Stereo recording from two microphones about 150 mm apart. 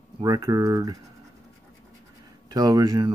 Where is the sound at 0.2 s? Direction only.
25° right (ahead or behind).